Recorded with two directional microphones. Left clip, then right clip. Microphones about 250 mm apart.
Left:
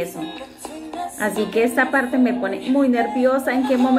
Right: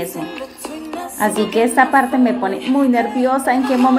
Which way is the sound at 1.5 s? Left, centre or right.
Centre.